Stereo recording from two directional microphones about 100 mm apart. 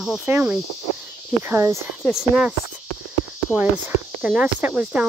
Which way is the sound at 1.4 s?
30° right (ahead or behind).